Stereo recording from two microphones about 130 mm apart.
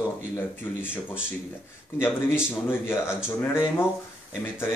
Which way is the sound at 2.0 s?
20° left (ahead or behind).